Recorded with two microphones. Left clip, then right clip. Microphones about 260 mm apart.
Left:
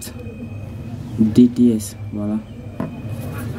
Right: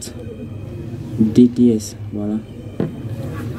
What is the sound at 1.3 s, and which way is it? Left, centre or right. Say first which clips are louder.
Speech: right 1 dB; centre.